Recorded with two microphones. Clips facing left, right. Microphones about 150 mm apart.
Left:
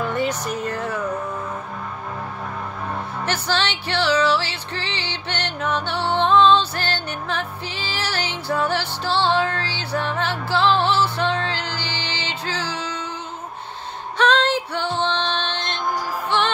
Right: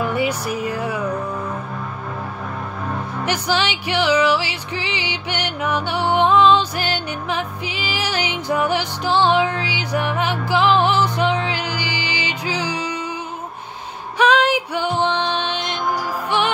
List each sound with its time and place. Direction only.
0.0 s music: 10° right (ahead or behind)
3.3 s music: 15° right (ahead or behind)
14.1 s music: 10° right (ahead or behind)